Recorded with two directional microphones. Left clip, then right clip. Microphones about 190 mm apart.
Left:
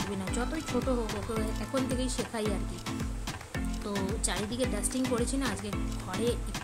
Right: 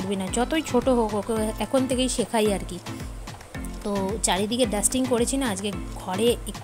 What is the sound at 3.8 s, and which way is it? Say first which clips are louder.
A woman's voice: right 10 dB; 30° right (ahead or behind).